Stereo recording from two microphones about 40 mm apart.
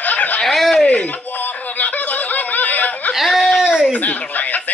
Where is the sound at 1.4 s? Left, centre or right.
Left.